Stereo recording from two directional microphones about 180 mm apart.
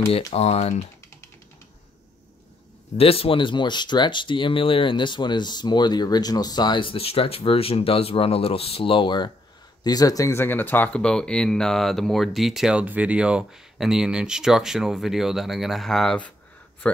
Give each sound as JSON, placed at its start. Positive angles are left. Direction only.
{"t": 0.3, "sound": "speech", "side_deg": 35}
{"t": 3.0, "sound": "speech", "side_deg": 30}